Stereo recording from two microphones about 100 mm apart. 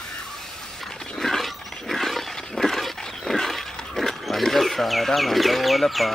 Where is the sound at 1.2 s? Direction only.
Centre (ahead or behind).